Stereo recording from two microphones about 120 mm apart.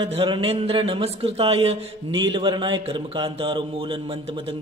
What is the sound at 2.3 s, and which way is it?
A man's voice, 45° right (ahead or behind).